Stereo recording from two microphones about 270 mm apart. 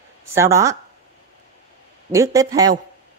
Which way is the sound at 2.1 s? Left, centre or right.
Centre.